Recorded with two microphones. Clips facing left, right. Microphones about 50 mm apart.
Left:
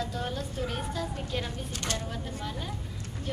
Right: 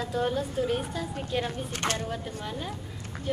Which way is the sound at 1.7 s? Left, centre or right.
Right.